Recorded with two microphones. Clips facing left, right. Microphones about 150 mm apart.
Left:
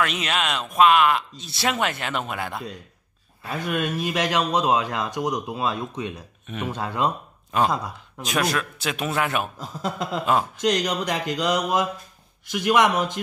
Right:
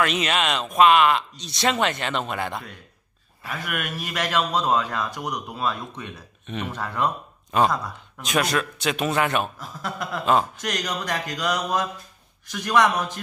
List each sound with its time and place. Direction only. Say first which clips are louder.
0.0 s speech: right 2 dB; centre (ahead or behind)
3.4 s speech: left 5 dB; 25° left (ahead or behind)
6.4 s speech: even; 5° left (ahead or behind)
6.7 s speech: left 1 dB; 15° left (ahead or behind)
7.5 s speech: right 1 dB; centre (ahead or behind)
9.6 s speech: left 3 dB; 20° left (ahead or behind)